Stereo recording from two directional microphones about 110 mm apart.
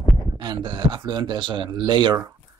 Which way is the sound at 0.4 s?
45° right (ahead or behind).